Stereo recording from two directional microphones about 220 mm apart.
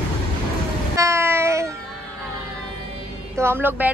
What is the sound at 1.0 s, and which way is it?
Train, 10° right (ahead or behind).